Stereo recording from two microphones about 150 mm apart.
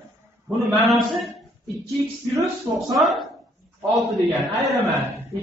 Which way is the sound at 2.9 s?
Centre (ahead or behind).